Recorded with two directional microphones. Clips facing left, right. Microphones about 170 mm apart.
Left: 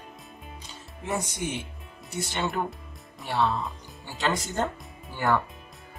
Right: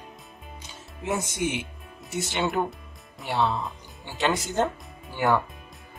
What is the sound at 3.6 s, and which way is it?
Speech, centre (ahead or behind).